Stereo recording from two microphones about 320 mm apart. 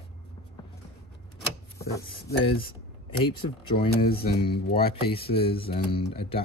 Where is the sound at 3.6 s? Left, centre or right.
Centre.